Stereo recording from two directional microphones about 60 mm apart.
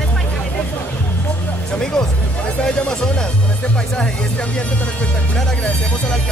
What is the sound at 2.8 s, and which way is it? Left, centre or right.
Speech, centre.